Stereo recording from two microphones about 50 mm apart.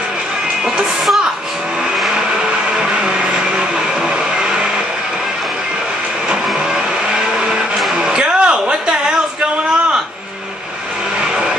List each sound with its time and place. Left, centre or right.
0.7 s speech: centre
2.0 s vehicle: centre
6.2 s vehicle: centre
7.9 s music: centre
11.1 s vehicle: centre